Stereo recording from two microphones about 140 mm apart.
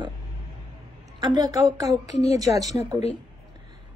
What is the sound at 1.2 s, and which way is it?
Speech, 30° right (ahead or behind).